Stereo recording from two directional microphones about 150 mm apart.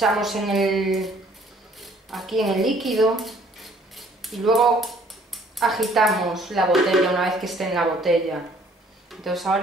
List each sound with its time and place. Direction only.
0.0 s speech: centre (ahead or behind)